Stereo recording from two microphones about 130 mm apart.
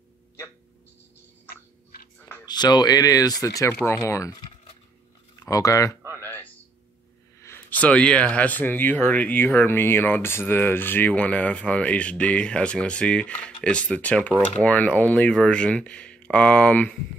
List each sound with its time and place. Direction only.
2.4 s speech: 35° left (ahead or behind)
5.4 s speech: 25° left (ahead or behind)
6.0 s a sound: 20° right (ahead or behind)
7.4 s speech: 15° left (ahead or behind)